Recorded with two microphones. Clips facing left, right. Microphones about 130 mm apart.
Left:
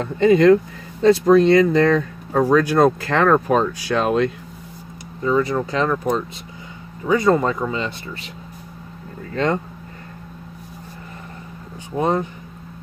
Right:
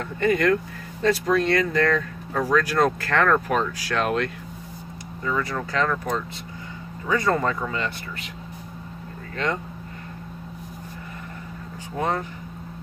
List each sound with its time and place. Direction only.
0.0 s speech: 25° left (ahead or behind)
9.3 s speech: 30° left (ahead or behind)
12.0 s speech: 20° left (ahead or behind)